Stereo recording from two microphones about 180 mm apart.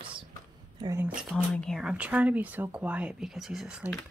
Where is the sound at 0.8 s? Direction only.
15° right (ahead or behind).